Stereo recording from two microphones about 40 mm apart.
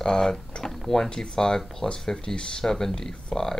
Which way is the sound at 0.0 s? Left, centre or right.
Centre.